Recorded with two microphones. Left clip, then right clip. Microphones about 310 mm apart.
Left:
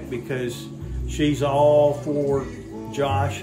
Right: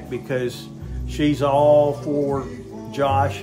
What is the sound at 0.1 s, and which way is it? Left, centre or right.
Speech, centre.